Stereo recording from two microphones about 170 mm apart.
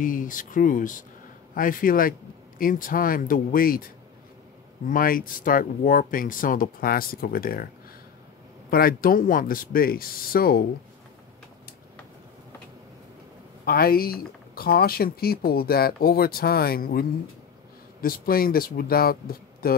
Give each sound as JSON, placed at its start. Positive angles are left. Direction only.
{"t": 0.0, "sound": "speech", "side_deg": 50}
{"t": 4.8, "sound": "speech", "side_deg": 55}
{"t": 13.7, "sound": "speech", "side_deg": 60}
{"t": 18.0, "sound": "speech", "side_deg": 60}